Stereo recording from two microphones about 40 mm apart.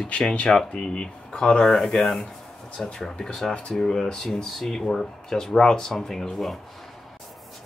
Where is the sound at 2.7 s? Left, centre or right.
Centre.